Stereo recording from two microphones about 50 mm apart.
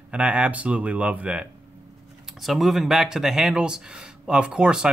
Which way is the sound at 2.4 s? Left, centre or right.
Centre.